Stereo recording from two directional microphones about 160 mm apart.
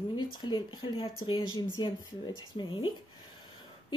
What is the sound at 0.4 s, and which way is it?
A woman's voice, 30° left (ahead or behind).